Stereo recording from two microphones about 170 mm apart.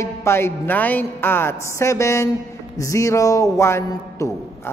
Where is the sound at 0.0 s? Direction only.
15° left (ahead or behind).